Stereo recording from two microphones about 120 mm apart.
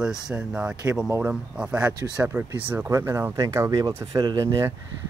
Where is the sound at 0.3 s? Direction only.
5° right (ahead or behind); by 4.7 s 30° right (ahead or behind).